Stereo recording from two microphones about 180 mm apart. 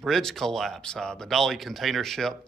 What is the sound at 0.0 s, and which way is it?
Speech, centre (ahead or behind).